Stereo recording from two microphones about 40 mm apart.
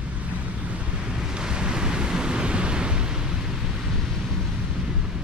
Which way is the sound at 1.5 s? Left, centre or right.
Right.